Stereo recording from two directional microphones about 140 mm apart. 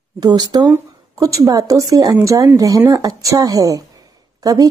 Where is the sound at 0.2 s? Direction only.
30° right (ahead or behind).